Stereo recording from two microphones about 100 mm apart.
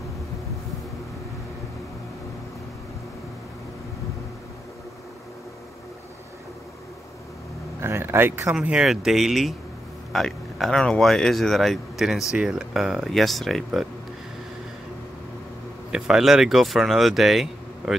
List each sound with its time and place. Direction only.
7.8 s speech: 25° right (ahead or behind)
8.5 s speech: 10° right (ahead or behind)
15.9 s speech: 5° right (ahead or behind)